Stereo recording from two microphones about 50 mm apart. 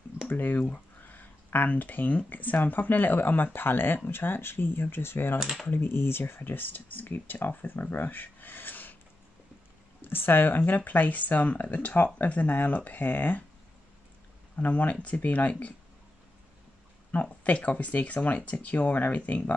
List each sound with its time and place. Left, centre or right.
0.3 s speech: left
5.4 s speech: centre
5.7 s speech: left
10.0 s speech: left
14.5 s speech: left
17.1 s speech: left